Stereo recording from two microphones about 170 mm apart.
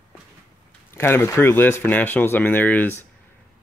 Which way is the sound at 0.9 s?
15° left (ahead or behind).